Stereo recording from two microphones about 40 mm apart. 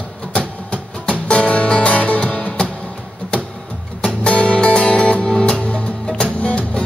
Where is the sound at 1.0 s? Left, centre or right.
Left.